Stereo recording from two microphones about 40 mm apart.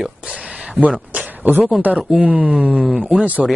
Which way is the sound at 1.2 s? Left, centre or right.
Right.